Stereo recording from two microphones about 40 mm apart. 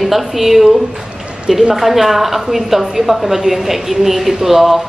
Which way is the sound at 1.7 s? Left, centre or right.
Centre.